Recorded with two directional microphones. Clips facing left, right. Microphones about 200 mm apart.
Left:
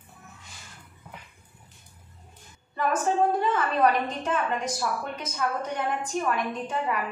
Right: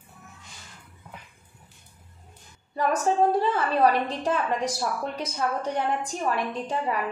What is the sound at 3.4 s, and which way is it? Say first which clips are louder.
A woman's voice: right 1 dB; 30° right (ahead or behind).